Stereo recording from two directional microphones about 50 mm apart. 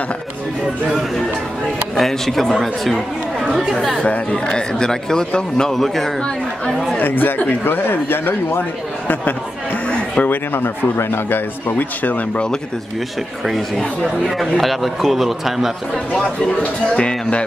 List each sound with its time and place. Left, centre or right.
2.0 s a man's voice: centre
4.0 s speech: left
7.0 s a man's voice: left
9.8 s a sound: centre
10.2 s a man's voice: left
13.5 s a man's voice: centre
16.9 s speech: left